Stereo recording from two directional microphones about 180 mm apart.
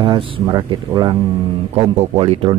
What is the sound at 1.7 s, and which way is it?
Speech, 35° right (ahead or behind).